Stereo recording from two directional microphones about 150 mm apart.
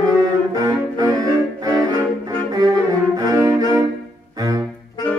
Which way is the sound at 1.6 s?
25° right (ahead or behind).